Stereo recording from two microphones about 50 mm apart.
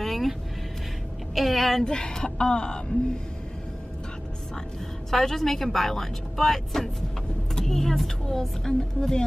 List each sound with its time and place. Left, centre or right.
0.0 s vehicle: centre
1.3 s a woman's voice: centre
2.0 s speech: centre
5.1 s speech: centre